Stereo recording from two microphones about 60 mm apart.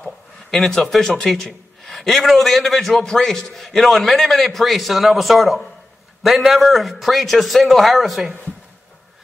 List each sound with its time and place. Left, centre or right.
0.5 s a man's voice: centre